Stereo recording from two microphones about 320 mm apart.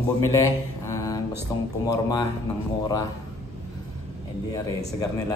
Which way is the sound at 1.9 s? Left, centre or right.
Centre.